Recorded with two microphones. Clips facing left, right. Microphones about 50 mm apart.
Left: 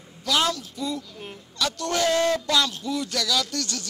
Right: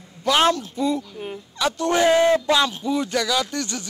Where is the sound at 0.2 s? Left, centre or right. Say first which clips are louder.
Right 6 dB; right.